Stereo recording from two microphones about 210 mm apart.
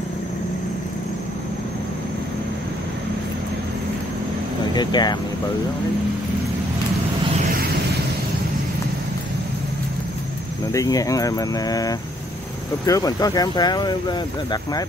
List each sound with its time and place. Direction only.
4.7 s speech: 20° left (ahead or behind)
10.7 s speech: 15° left (ahead or behind)